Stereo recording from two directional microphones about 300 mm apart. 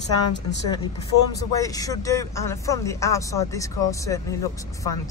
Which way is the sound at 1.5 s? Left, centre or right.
Centre.